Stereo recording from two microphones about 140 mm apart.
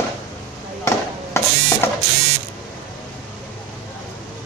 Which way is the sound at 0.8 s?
20° left (ahead or behind).